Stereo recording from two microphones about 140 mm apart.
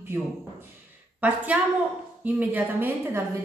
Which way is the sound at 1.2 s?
10° right (ahead or behind).